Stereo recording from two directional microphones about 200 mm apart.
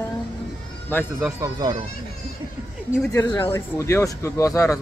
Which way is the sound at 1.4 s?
20° right (ahead or behind).